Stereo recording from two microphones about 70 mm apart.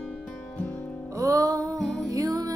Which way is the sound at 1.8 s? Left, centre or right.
Centre.